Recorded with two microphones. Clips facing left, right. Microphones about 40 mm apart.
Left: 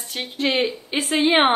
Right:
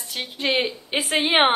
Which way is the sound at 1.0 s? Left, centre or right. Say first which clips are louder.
Left 2 dB; right.